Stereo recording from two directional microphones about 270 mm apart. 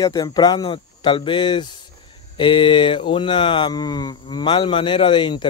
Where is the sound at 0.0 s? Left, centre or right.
Centre.